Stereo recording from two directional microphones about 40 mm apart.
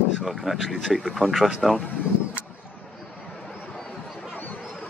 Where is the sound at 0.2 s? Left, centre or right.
Centre.